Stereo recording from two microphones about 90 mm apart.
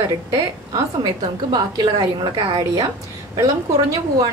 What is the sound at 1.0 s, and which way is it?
A woman's voice, 50° right (ahead or behind).